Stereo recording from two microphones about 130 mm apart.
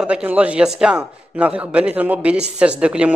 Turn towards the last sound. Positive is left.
turn(degrees=-10)  # may be behind; listen again after turning